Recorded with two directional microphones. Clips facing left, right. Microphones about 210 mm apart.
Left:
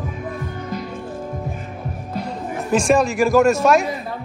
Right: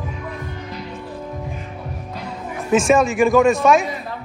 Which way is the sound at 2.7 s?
Centre (ahead or behind).